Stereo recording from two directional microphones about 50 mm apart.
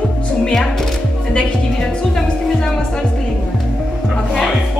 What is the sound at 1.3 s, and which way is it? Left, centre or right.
Music, centre.